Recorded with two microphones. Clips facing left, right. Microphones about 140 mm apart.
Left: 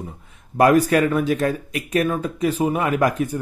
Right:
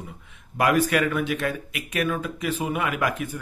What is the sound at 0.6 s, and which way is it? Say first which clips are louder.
Speech: left 6 dB; 40° left (ahead or behind).